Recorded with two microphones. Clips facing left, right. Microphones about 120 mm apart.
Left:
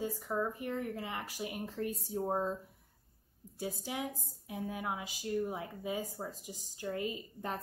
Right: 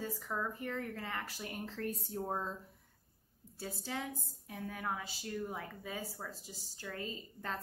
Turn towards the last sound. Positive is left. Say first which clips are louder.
# left 4 dB
turn(degrees=15)  # may be behind; listen again after turning